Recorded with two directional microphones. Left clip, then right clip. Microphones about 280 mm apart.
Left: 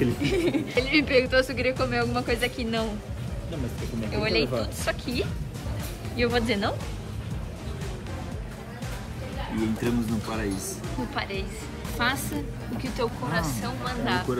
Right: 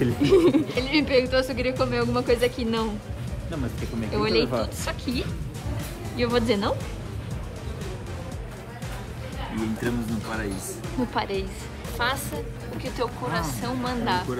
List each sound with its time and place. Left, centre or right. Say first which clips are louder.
0.0 s a sound: right 6 dB; centre
0.8 s speech: left 1 dB; centre
4.1 s speech: right 2 dB; centre
9.8 s speech: left 1 dB; centre